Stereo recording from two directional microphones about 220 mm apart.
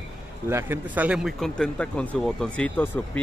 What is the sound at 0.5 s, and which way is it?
Speech, 10° right (ahead or behind).